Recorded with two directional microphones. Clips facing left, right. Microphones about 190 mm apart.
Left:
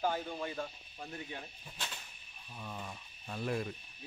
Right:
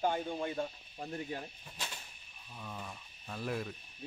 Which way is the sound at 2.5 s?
5° left (ahead or behind).